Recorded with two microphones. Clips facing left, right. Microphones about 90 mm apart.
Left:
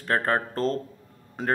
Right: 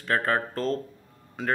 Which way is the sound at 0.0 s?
35° left (ahead or behind).